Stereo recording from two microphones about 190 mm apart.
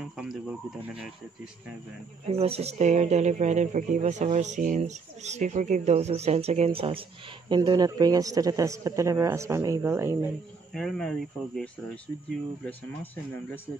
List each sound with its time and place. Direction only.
0.0 s speech: 5° right (ahead or behind)
2.2 s speech: 30° right (ahead or behind); by 10.3 s 15° right (ahead or behind)
10.7 s speech: centre (ahead or behind)